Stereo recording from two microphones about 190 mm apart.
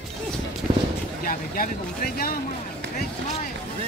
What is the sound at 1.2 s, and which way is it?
Vehicle, 45° left (ahead or behind).